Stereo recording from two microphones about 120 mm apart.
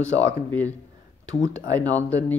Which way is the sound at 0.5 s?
15° left (ahead or behind).